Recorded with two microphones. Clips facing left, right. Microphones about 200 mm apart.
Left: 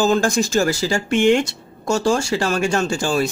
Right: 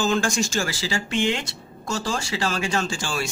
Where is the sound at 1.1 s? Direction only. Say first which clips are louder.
Left 9 dB; 55° left (ahead or behind).